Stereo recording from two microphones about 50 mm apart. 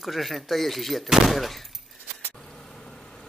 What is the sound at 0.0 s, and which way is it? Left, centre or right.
Speech, centre.